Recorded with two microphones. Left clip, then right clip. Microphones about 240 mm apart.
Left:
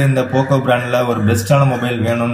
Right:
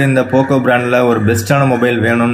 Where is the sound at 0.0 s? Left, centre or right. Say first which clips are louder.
Right 4 dB; centre.